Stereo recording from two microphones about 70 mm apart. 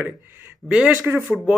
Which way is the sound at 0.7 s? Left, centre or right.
Centre.